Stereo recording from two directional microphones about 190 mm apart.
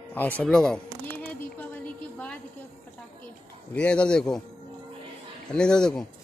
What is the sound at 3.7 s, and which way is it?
Speech, 5° left (ahead or behind).